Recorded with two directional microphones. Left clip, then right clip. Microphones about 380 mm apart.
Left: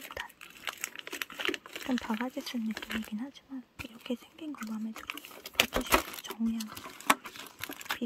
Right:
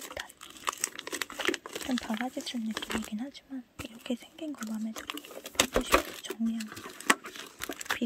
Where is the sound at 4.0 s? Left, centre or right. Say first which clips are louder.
Right 2 dB; centre.